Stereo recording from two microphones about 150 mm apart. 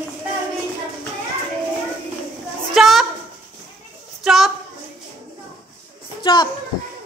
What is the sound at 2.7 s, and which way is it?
Speech, centre (ahead or behind).